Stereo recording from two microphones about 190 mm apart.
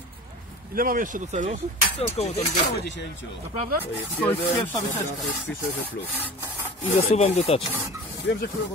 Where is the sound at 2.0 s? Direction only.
30° left (ahead or behind).